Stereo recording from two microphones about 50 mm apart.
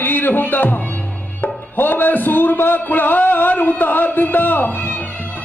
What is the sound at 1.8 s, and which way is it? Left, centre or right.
A man's voice, left.